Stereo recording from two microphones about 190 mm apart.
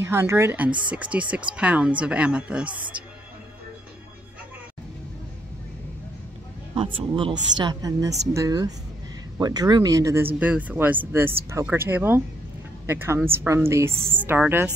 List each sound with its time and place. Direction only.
0.0 s speech: 15° right (ahead or behind)
6.7 s a woman's voice: 30° right (ahead or behind); by 14.7 s 10° right (ahead or behind)